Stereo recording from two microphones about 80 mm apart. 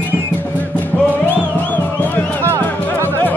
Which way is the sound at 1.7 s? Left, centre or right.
Left.